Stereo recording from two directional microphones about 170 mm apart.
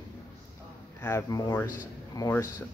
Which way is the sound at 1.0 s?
15° left (ahead or behind).